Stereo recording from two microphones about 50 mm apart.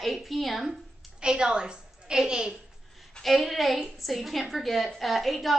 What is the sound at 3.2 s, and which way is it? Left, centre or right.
A woman's voice, centre.